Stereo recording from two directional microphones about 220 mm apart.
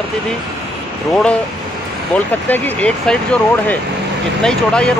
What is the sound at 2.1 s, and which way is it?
Speech, 10° left (ahead or behind).